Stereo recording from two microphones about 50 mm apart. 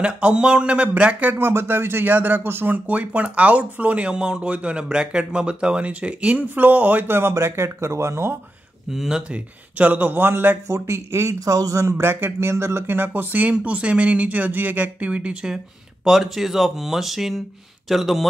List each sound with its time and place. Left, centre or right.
0.0 s speech: right
1.4 s speech: right
2.7 s speech: right
7.1 s speech: right
8.9 s speech: centre
9.3 s speech: right
10.7 s speech: right
12.0 s speech: right; by 18.2 s centre